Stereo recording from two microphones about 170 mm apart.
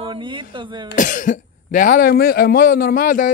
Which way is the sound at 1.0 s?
50° left (ahead or behind).